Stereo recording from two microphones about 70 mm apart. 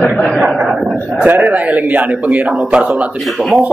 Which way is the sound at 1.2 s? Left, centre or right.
Right.